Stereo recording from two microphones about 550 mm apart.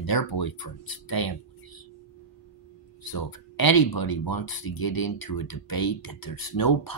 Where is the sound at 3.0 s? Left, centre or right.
Left.